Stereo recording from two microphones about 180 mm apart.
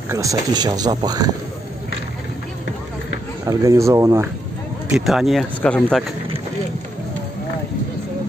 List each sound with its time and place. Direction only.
0.1 s speech: 20° right (ahead or behind)
3.4 s speech: 20° right (ahead or behind)
4.9 s speech: centre (ahead or behind)